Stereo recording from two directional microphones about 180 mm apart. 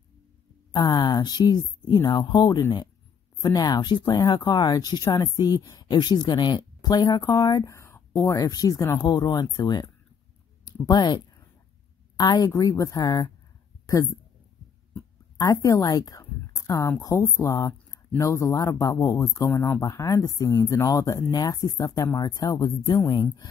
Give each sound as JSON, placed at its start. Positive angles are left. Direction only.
{"t": 0.7, "sound": "speech", "side_deg": 25}
{"t": 10.6, "sound": "a sound", "side_deg": 20}
{"t": 12.2, "sound": "speech", "side_deg": 20}
{"t": 15.3, "sound": "speech", "side_deg": 20}